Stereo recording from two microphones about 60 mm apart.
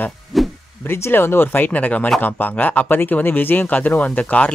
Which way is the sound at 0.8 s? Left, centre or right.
Left.